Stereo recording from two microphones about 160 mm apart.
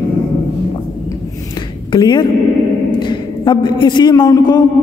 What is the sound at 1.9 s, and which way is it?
A man's voice, 30° left (ahead or behind).